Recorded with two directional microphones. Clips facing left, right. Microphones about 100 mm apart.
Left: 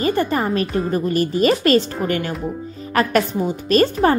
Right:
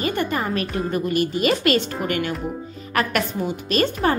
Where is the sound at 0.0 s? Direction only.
35° left (ahead or behind).